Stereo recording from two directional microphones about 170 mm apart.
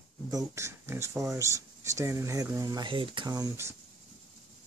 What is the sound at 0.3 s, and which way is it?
Speech, 20° right (ahead or behind).